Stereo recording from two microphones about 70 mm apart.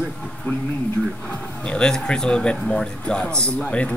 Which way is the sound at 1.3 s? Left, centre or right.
Centre.